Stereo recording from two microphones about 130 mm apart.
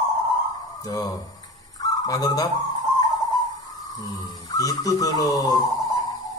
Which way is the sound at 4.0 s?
30° left (ahead or behind).